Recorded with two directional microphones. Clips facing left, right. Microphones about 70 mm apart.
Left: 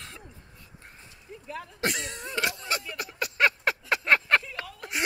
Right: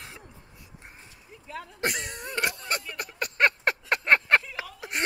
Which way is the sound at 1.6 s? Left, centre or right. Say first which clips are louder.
Even; centre.